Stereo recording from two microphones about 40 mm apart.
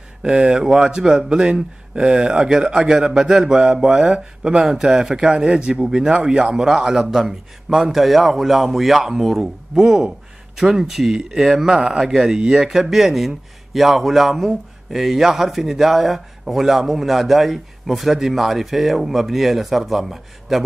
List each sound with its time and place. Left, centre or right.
0.2 s a man's voice: right; by 9.5 s centre
9.8 s a man's voice: centre